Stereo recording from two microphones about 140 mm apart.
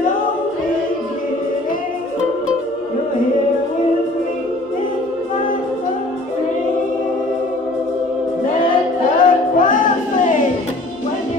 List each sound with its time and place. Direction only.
9.2 s music: 70° left (ahead or behind)